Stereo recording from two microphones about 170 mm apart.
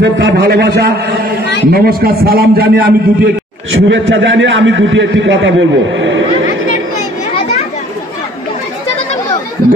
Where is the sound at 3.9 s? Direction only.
90° right.